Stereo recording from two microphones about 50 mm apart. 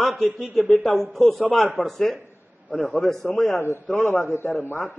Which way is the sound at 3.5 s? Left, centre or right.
Left.